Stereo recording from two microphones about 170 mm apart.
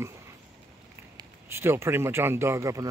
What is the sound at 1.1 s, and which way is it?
Speech, 15° right (ahead or behind).